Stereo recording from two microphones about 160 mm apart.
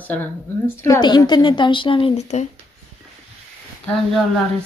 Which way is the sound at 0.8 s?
25° left (ahead or behind).